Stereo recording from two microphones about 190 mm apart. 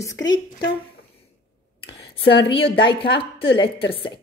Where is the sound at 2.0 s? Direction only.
60° left (ahead or behind).